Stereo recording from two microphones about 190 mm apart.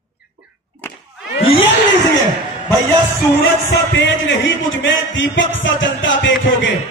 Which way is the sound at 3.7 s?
75° left (ahead or behind).